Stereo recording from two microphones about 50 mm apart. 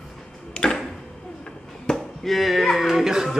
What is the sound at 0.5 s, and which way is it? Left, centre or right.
Tick-tock, centre.